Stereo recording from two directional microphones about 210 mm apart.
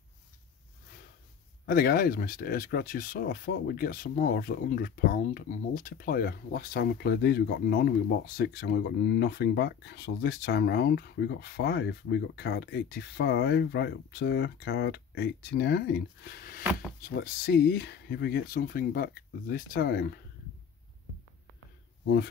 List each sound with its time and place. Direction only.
1.7 s speech: 45° left (ahead or behind)